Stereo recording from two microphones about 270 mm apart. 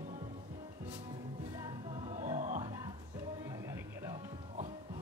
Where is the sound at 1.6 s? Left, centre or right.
Right.